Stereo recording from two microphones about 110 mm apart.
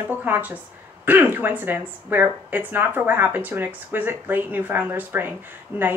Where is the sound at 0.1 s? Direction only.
15° right (ahead or behind).